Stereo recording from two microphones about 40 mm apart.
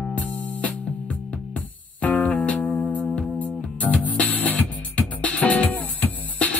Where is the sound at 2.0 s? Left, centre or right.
Left.